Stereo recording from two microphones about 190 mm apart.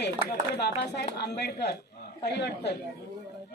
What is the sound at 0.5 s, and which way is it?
A woman's voice, 60° left (ahead or behind).